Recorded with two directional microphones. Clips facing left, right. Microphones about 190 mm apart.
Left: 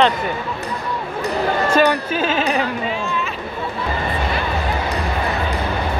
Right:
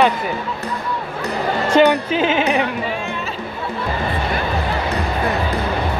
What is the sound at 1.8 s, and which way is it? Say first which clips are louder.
Speech: right 6 dB; 20° right (ahead or behind).